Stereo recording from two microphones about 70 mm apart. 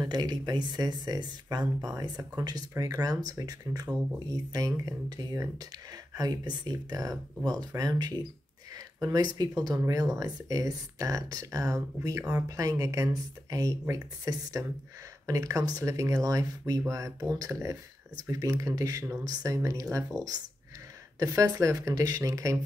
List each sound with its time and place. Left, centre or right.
0.0 s speech: right
2.8 s speech: right
9.7 s speech: right